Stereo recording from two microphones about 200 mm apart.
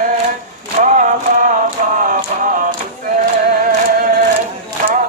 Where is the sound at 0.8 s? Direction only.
40° right (ahead or behind).